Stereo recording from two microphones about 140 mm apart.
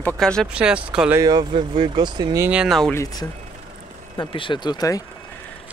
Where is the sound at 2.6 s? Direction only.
Centre (ahead or behind).